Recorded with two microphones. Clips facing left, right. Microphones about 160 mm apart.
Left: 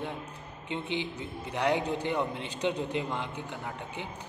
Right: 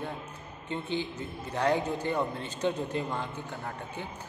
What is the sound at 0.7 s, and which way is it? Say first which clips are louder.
Speech: right 1 dB; 40° right (ahead or behind).